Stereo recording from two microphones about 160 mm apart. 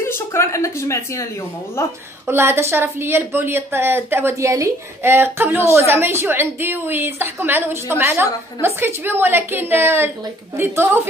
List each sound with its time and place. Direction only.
0.0 s a woman's voice: 15° left (ahead or behind)
2.2 s a woman's voice: 15° right (ahead or behind)